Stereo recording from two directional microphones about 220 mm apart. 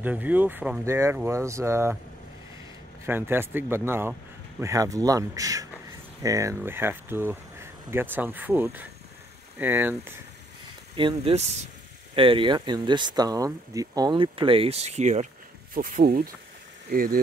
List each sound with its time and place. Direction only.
0.0 s speech: 5° right (ahead or behind)
3.1 s speech: 10° right (ahead or behind)
11.0 s speech: 25° right (ahead or behind); by 17.2 s 40° right (ahead or behind)